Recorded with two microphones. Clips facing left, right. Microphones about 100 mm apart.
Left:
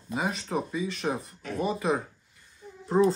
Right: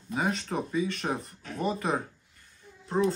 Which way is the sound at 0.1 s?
5° left (ahead or behind).